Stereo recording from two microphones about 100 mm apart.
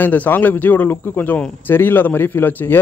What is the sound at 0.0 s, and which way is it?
Speech, 20° left (ahead or behind).